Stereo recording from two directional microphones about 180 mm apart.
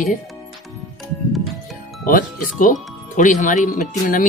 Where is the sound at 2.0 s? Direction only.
45° left (ahead or behind).